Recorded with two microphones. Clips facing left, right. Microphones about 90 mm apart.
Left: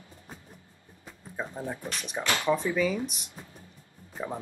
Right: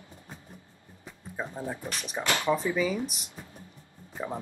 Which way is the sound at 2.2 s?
20° right (ahead or behind).